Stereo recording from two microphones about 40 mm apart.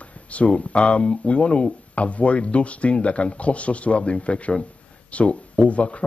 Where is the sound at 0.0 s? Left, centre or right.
Left.